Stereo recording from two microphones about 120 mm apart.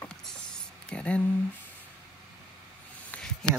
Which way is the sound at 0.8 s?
10° left (ahead or behind).